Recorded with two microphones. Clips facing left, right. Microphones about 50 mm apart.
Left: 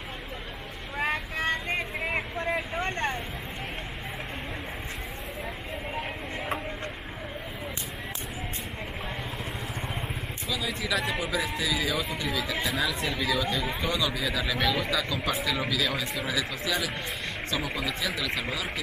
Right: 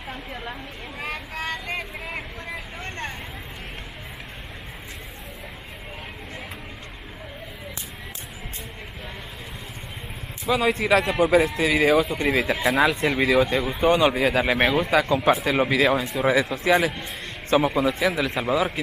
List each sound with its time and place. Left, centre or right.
0.9 s vehicle: left
10.5 s a man's voice: right